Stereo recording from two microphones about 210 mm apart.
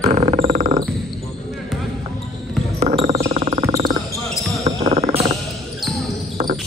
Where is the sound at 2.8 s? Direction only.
30° right (ahead or behind).